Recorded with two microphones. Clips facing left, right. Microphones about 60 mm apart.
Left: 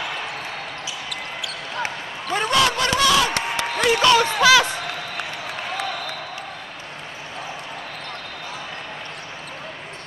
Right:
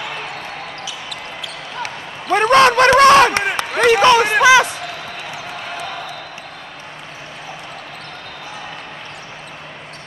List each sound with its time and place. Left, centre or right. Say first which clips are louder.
2.3 s speech: right 9 dB; right
3.5 s a sound: right 4 dB; right
4.0 s speech: right 3 dB; right